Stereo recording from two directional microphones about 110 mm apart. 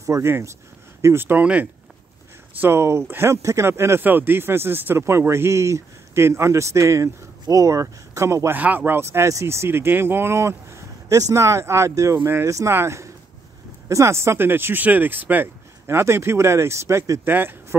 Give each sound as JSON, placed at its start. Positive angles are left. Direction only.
{"t": 0.0, "sound": "speech", "side_deg": -25}
{"t": 2.6, "sound": "speech", "side_deg": -25}